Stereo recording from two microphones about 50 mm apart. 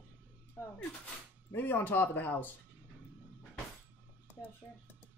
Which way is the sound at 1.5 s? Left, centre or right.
Left.